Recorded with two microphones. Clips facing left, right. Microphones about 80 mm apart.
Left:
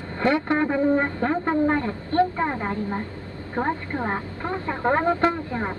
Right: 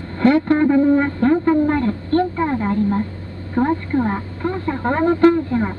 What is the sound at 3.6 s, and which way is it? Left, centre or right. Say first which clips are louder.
A woman's voice: right 8 dB; centre.